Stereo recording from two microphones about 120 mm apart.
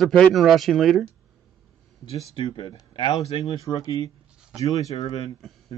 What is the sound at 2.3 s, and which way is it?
Speech, 45° left (ahead or behind).